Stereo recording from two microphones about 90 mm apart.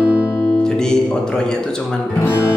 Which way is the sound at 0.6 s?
5° left (ahead or behind).